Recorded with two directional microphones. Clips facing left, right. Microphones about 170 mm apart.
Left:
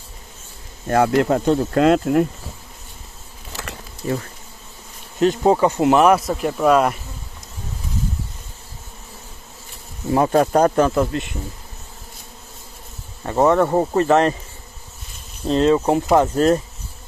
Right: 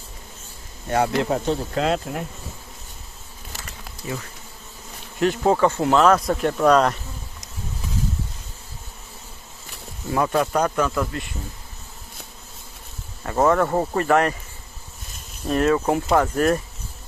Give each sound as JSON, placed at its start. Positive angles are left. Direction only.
{"t": 0.8, "sound": "speech", "side_deg": 55}
{"t": 4.0, "sound": "speech", "side_deg": 40}
{"t": 5.2, "sound": "speech", "side_deg": 20}
{"t": 6.2, "sound": "speech", "side_deg": 5}
{"t": 10.1, "sound": "speech", "side_deg": 35}
{"t": 13.2, "sound": "speech", "side_deg": 20}
{"t": 15.4, "sound": "speech", "side_deg": 20}